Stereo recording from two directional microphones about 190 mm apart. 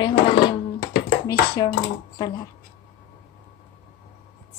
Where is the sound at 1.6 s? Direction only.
20° left (ahead or behind).